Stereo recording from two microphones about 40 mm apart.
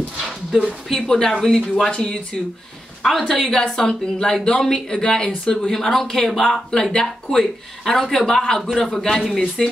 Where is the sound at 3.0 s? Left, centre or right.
Centre.